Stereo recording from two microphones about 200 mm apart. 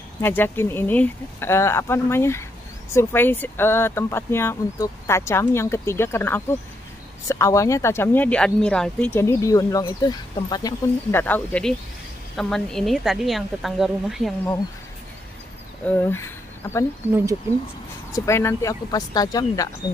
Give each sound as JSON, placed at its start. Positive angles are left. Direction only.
{"t": 0.2, "sound": "a woman's voice", "side_deg": 10}
{"t": 15.9, "sound": "speech", "side_deg": 10}
{"t": 18.1, "sound": "speech", "side_deg": 15}